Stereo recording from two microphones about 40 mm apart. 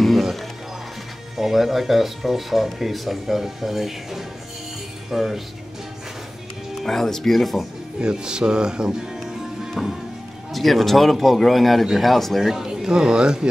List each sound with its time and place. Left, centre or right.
0.0 s music: centre
1.3 s speech: centre
6.8 s speech: centre
8.0 s speech: centre
9.2 s music: centre
10.5 s speech: centre; by 13.5 s right